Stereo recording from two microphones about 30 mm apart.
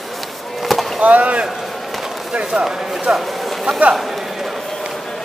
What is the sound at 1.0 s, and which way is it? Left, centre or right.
Speech, right.